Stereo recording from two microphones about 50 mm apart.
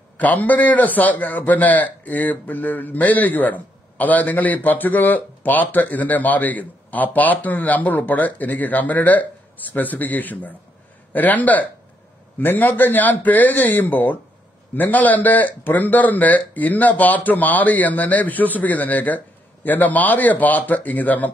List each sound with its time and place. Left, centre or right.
0.2 s a man's voice: left